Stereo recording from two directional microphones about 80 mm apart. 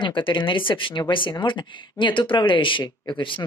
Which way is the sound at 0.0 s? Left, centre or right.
Left.